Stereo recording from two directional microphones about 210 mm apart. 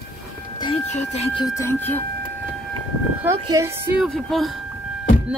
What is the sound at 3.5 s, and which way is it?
Speech, 10° right (ahead or behind).